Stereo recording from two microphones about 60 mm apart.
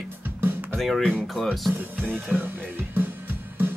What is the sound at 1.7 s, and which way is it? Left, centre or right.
Speech, right.